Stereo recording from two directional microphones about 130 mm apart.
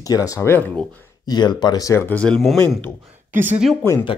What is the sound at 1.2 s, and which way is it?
Speech, 35° left (ahead or behind).